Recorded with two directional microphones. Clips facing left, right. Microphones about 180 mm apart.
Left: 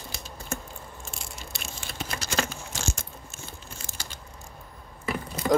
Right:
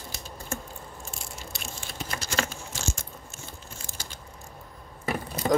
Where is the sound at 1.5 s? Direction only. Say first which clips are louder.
Left 2 dB; 70° left (ahead or behind).